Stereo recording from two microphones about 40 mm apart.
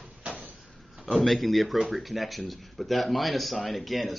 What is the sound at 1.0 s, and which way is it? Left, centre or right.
Speech, centre.